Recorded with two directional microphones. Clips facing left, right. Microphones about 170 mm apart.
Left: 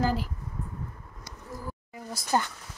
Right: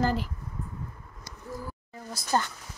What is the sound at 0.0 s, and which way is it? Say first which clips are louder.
Speech: even; 5° left (ahead or behind).